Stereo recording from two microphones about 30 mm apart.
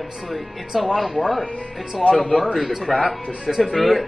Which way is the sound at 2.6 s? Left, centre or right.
Centre.